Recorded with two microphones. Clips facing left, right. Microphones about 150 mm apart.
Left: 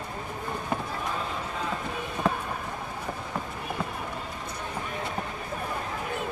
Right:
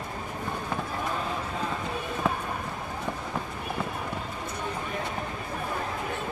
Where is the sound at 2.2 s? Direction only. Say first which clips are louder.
Left 2 dB; centre (ahead or behind).